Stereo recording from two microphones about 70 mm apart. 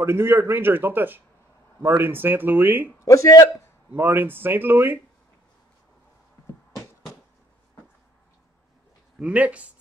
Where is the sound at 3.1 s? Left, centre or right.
Left.